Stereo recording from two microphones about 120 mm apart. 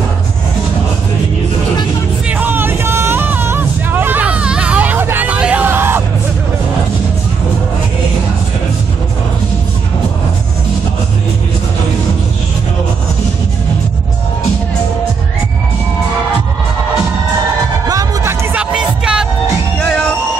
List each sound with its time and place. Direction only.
2.2 s a sound: 15° right (ahead or behind)
17.8 s music: 25° right (ahead or behind)
18.6 s music: 10° right (ahead or behind)
19.8 s music: 10° left (ahead or behind)